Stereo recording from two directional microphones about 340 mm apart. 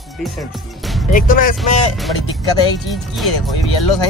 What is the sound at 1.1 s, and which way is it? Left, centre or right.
Speech, left.